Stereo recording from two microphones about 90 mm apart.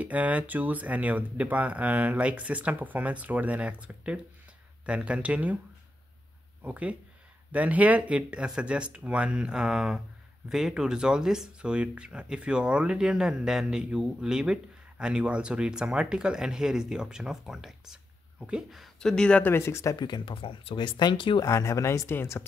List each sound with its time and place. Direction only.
0.0 s speech: 15° right (ahead or behind)
6.6 s speech: 15° right (ahead or behind)
18.9 s speech: 10° left (ahead or behind)
19.5 s speech: 30° left (ahead or behind)
20.0 s speech: 65° left (ahead or behind)
21.4 s speech: 35° left (ahead or behind)